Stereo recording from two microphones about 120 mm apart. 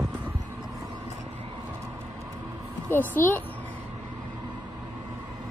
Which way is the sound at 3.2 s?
20° left (ahead or behind).